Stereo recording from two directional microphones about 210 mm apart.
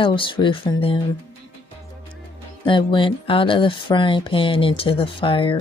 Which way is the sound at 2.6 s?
25° left (ahead or behind).